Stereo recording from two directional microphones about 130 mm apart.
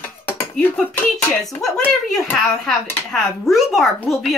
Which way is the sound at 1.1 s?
Centre (ahead or behind).